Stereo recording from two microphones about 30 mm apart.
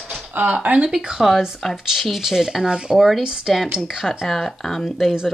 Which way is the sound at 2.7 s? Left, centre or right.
Right.